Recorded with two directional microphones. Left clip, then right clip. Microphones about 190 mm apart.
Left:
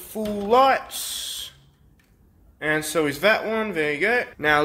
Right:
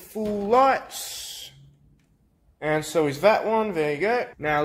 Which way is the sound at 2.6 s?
5° left (ahead or behind).